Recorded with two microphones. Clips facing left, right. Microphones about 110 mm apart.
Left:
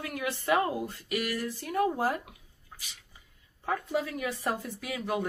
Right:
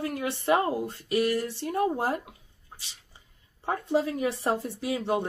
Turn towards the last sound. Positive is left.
turn(degrees=-30)  # may be behind; listen again after turning